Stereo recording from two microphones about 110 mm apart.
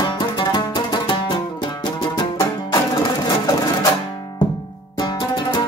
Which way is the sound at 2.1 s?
35° left (ahead or behind).